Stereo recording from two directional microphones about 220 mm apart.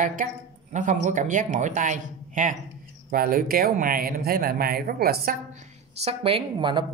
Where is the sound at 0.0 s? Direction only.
35° right (ahead or behind).